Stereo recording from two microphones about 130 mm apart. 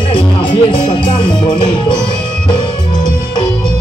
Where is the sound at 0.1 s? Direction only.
40° left (ahead or behind).